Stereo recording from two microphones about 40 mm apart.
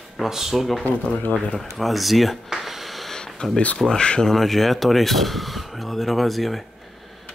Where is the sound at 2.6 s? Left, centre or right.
Centre.